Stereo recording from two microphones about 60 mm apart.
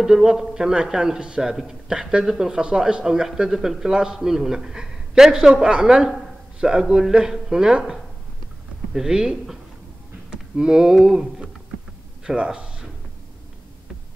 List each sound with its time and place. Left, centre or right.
0.0 s speech: centre